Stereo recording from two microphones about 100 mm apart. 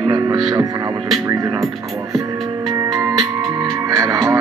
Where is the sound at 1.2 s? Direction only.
35° right (ahead or behind).